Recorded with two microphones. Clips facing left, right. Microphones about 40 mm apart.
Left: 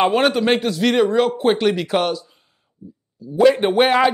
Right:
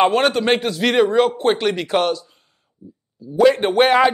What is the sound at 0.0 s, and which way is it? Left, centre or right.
Speech, centre.